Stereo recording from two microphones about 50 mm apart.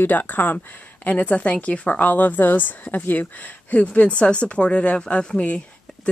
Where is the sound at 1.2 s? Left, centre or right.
Left.